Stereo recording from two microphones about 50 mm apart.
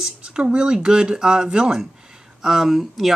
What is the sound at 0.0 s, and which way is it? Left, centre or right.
Speech, centre.